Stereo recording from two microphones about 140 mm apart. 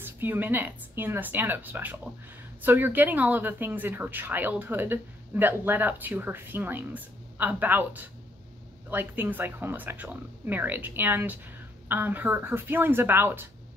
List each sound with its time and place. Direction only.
0.0 s speech: 15° right (ahead or behind)